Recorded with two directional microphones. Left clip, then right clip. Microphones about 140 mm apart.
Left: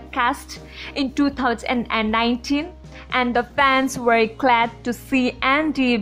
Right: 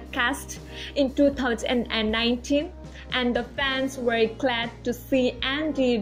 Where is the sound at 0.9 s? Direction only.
50° left (ahead or behind).